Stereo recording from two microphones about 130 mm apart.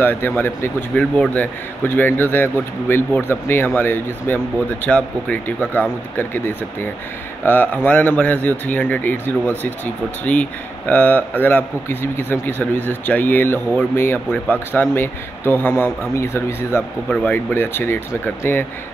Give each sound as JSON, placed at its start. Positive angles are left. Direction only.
{"t": 0.0, "sound": "speech", "side_deg": 15}